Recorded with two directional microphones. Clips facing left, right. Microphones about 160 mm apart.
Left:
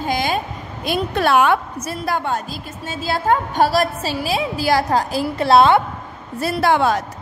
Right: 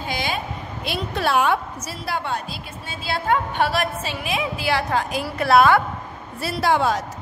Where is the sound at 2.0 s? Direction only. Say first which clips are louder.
Left 4 dB; 45° left (ahead or behind); by 5.8 s 25° left (ahead or behind).